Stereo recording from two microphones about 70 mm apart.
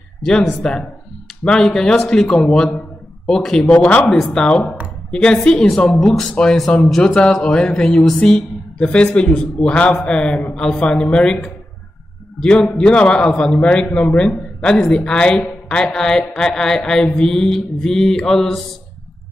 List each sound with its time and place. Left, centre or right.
0.2 s a man's voice: centre